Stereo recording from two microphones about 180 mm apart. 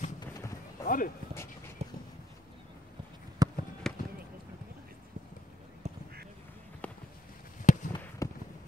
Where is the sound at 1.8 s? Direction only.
35° right (ahead or behind).